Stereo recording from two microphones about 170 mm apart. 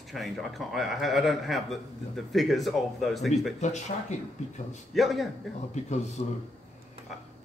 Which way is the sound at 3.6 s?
45° left (ahead or behind).